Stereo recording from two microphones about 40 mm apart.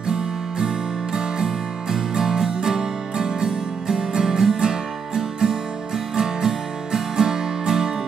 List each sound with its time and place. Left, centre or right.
0.0 s music: centre